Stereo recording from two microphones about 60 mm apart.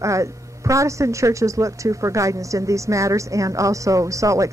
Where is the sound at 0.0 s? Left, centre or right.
Right.